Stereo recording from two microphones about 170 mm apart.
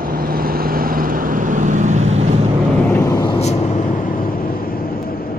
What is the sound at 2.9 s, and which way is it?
Vehicle, 20° left (ahead or behind).